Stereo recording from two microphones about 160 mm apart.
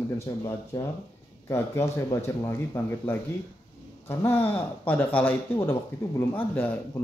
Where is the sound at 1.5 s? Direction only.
15° left (ahead or behind).